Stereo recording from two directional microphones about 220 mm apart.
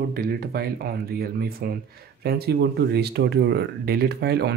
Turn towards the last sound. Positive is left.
turn(degrees=-50)  # may be behind; listen again after turning